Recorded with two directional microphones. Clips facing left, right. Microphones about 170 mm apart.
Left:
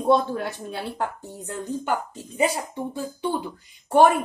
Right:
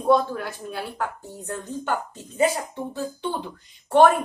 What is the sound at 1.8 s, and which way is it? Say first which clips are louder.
A woman's voice: left 1 dB; 15° left (ahead or behind).